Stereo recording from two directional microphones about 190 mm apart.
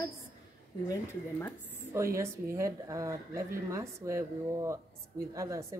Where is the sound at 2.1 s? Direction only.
15° right (ahead or behind).